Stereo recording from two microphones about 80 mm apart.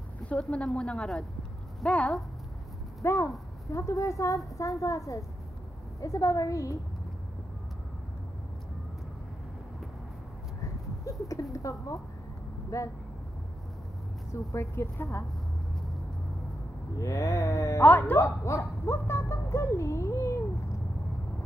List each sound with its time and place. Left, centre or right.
0.3 s a woman's voice: centre
3.0 s a woman's voice: left
11.1 s a sound: left
11.5 s speech: left
14.5 s speech: left
17.0 s speech: left
17.8 s speech: left